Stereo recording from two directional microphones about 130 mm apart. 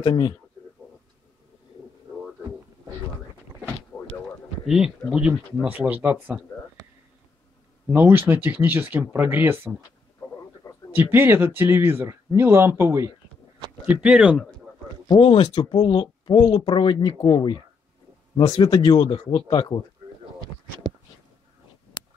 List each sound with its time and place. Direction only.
0.0 s speech: 40° left (ahead or behind)
3.9 s a sound: 15° left (ahead or behind)
4.6 s speech: 5° right (ahead or behind)
7.9 s speech: 15° right (ahead or behind)
11.0 s speech: 15° right (ahead or behind)
14.0 s speech: 10° right (ahead or behind)
15.0 s speech: 40° left (ahead or behind)
18.6 s speech: 40° left (ahead or behind)
20.9 s a sound: 35° right (ahead or behind)
22.0 s a sound: 35° left (ahead or behind)